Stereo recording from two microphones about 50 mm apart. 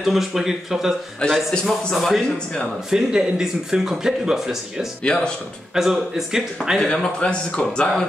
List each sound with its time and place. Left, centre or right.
0.0 s speech: centre
1.2 s speech: left
2.0 s speech: centre
2.3 s speech: centre
2.9 s speech: centre
5.0 s speech: centre
5.8 s speech: centre
6.9 s speech: centre